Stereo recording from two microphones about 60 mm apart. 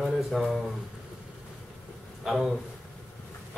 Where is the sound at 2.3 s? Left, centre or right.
Centre.